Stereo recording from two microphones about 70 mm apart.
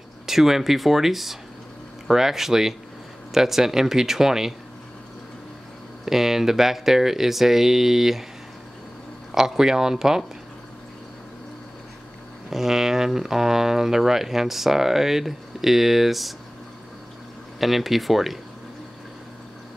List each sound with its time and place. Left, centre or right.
0.3 s speech: centre
6.0 s speech: centre
9.3 s speech: centre
12.4 s speech: centre
17.6 s speech: centre